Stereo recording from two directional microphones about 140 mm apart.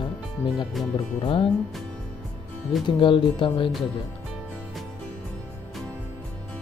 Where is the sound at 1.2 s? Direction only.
40° left (ahead or behind).